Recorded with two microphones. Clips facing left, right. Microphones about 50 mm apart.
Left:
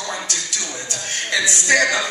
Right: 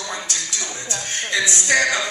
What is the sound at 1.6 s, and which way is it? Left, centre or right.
Speech, left.